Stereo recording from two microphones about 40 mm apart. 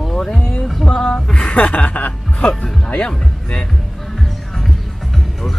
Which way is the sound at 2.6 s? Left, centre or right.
Left.